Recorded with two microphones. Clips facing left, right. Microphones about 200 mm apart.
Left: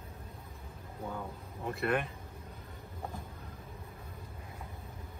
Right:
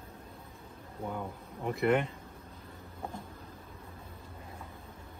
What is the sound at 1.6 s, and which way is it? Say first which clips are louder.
Speech: right 4 dB; 20° right (ahead or behind).